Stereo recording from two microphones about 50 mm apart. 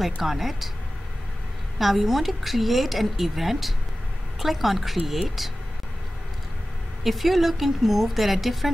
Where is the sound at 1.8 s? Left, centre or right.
Centre.